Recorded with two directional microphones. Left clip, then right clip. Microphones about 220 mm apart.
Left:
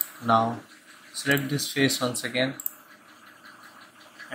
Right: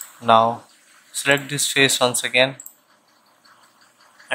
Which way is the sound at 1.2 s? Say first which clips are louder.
Right 6 dB; 25° right (ahead or behind).